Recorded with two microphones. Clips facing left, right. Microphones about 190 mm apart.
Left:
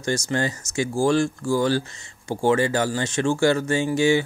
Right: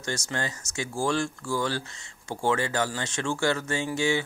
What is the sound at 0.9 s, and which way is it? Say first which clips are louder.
Speech: left 7 dB; 30° left (ahead or behind).